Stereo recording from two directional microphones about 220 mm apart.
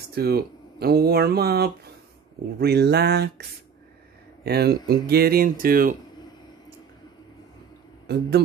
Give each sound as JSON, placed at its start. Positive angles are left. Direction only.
{"t": 0.1, "sound": "speech", "side_deg": -45}
{"t": 4.5, "sound": "speech", "side_deg": -45}
{"t": 8.1, "sound": "speech", "side_deg": -50}